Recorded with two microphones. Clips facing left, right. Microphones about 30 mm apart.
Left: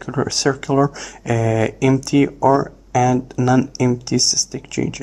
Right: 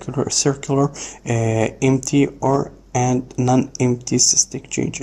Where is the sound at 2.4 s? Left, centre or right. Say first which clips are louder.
Left 4 dB; left.